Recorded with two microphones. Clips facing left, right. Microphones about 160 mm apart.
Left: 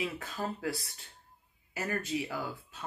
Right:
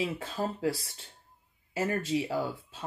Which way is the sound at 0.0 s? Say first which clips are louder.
Right 4 dB; 30° right (ahead or behind).